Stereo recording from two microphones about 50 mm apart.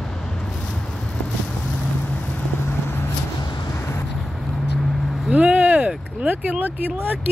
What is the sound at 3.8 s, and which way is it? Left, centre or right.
Vehicle, left.